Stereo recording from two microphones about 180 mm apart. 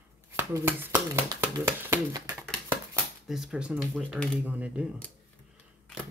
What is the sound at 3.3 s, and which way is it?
Speech, 5° right (ahead or behind).